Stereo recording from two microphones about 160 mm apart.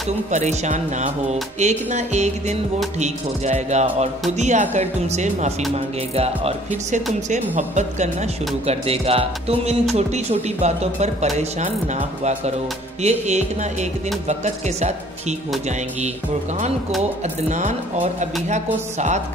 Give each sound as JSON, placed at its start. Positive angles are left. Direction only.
{"t": 0.3, "sound": "music", "side_deg": -50}
{"t": 6.1, "sound": "speech", "side_deg": -40}
{"t": 7.5, "sound": "music", "side_deg": -45}
{"t": 8.6, "sound": "speech", "side_deg": -40}
{"t": 9.9, "sound": "music", "side_deg": -45}
{"t": 17.5, "sound": "music", "side_deg": -50}